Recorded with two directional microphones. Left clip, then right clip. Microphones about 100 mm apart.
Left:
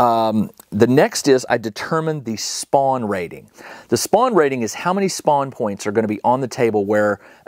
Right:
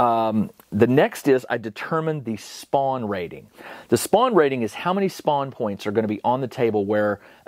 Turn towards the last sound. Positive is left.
turn(degrees=35)  # may be behind; listen again after turning